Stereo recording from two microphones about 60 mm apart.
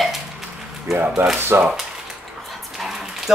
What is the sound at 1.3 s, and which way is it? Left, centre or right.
Speech, right.